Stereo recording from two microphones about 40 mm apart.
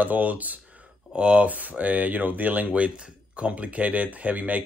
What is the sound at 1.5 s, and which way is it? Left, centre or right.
Speech, right.